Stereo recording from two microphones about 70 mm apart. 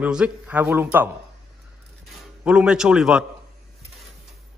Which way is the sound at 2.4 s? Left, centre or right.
Centre.